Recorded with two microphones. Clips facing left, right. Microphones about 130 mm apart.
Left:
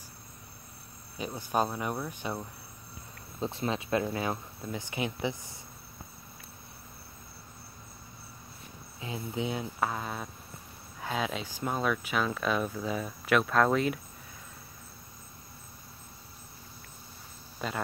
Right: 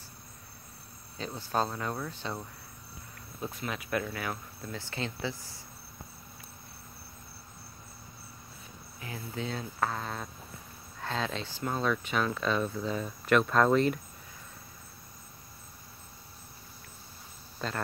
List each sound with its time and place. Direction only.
1.1 s speech: 15° left (ahead or behind)
3.3 s speech: 30° left (ahead or behind)
9.0 s speech: 20° left (ahead or behind); by 13.9 s 5° left (ahead or behind)
17.6 s speech: 5° left (ahead or behind)